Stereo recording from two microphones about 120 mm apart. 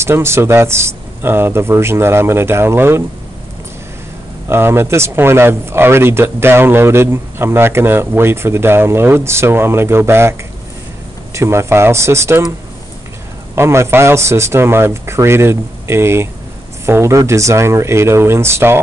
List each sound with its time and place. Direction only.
0.0 s speech: 20° right (ahead or behind)
4.5 s speech: 20° right (ahead or behind)
11.3 s speech: 20° right (ahead or behind)
13.6 s speech: 20° right (ahead or behind)